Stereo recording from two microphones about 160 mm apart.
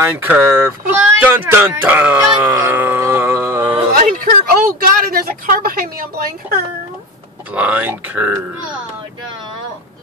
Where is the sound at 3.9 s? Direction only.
60° right (ahead or behind).